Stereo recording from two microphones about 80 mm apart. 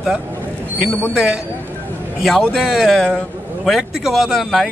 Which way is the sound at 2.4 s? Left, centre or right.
Centre.